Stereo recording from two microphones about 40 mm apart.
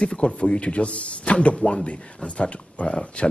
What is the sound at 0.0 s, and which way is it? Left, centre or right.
Speech, left.